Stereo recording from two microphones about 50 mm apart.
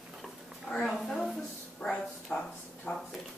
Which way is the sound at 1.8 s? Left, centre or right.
Left.